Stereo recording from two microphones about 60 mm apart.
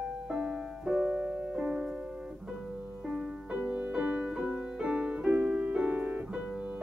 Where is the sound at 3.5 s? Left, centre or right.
Right.